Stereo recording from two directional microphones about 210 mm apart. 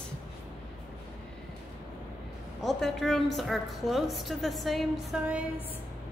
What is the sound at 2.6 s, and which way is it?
A woman's voice, centre (ahead or behind).